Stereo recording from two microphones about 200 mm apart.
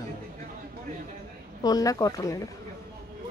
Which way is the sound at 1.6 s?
20° left (ahead or behind).